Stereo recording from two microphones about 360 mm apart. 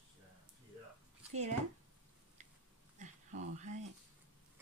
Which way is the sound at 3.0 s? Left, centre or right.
Centre.